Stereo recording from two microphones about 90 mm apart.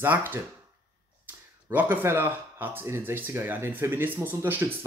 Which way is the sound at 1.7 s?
20° right (ahead or behind).